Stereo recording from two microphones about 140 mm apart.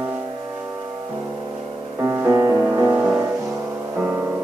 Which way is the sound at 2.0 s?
20° right (ahead or behind).